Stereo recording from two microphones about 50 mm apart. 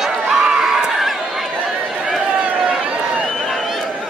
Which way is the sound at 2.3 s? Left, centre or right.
Centre.